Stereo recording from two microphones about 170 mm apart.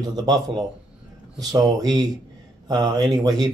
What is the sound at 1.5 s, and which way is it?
Speech, 25° right (ahead or behind).